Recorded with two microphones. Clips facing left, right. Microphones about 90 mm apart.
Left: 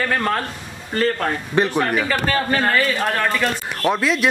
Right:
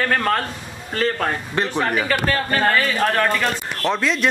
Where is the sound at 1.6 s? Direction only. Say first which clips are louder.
Left 5 dB; 15° left (ahead or behind).